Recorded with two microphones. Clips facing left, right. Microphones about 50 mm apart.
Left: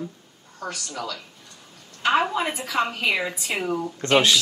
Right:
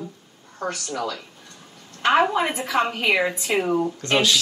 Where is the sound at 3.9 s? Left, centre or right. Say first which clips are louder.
Left 2 dB; left.